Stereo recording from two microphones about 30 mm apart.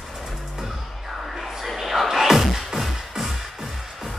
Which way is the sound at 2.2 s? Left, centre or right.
Centre.